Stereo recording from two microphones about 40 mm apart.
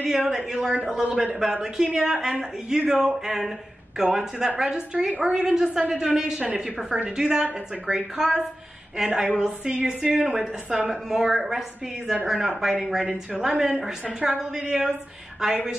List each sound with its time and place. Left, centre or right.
0.0 s a woman's voice: centre
3.3 s a woman's voice: centre; by 10.2 s right
10.9 s a woman's voice: centre
13.0 s a woman's voice: right
13.4 s a woman's voice: centre